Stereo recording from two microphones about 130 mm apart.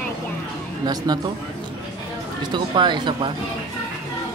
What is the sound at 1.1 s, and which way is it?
Speech, 30° right (ahead or behind).